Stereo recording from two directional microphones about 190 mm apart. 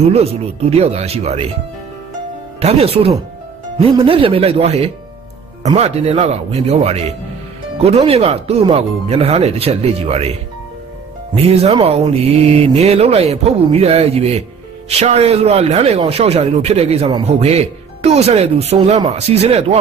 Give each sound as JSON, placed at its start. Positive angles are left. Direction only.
{"t": 0.0, "sound": "a man's voice", "side_deg": -30}
{"t": 2.6, "sound": "a man's voice", "side_deg": -30}
{"t": 11.3, "sound": "a man's voice", "side_deg": -35}